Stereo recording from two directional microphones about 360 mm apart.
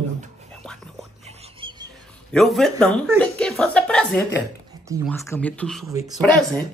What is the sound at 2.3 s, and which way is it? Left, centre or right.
Speech, centre.